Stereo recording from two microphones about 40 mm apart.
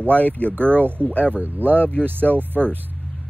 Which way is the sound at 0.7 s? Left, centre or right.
Right.